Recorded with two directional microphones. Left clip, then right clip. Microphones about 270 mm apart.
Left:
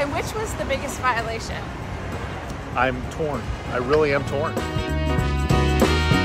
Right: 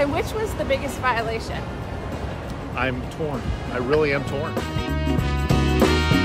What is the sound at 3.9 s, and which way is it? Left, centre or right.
Speech, centre.